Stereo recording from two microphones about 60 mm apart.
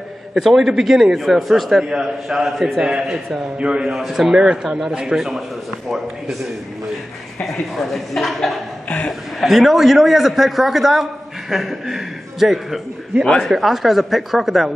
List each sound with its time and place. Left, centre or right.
0.3 s a man's voice: centre
3.8 s a man's voice: centre
7.7 s a man's voice: centre
8.8 s a sound: left
9.4 s a man's voice: centre